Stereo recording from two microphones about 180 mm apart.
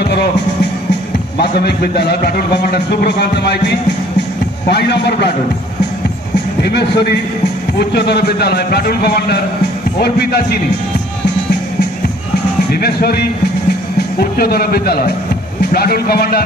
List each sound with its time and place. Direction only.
1.4 s a man's voice: 65° left (ahead or behind)
6.6 s a man's voice: 65° left (ahead or behind)
12.7 s a man's voice: 60° left (ahead or behind)